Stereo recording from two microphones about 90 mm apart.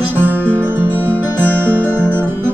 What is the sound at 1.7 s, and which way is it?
Music, 20° right (ahead or behind).